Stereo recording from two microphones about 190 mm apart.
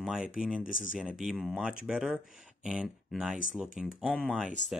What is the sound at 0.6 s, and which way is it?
Speech, 45° left (ahead or behind).